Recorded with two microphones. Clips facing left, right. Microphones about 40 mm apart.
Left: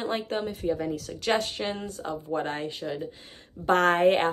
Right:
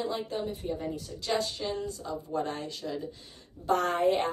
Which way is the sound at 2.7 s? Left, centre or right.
Left.